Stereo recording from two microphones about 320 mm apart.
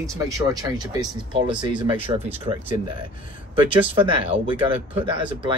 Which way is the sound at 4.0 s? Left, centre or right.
Centre.